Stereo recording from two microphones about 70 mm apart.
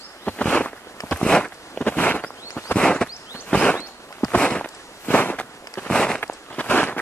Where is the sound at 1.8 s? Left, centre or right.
Left.